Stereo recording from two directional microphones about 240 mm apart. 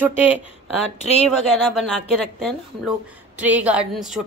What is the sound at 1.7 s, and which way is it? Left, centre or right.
A woman's voice, centre.